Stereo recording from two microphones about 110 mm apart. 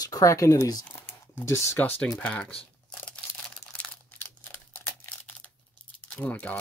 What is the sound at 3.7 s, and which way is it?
Crumpling, 15° left (ahead or behind).